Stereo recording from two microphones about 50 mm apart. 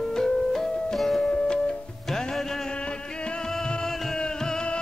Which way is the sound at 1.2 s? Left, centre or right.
Centre.